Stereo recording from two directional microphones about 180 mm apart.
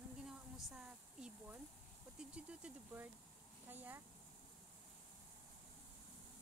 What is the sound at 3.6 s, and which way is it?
Speech, 10° right (ahead or behind).